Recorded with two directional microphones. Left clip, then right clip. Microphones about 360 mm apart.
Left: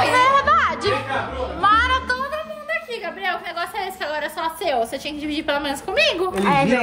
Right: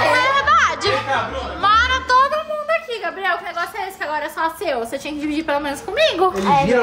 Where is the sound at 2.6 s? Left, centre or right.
Centre.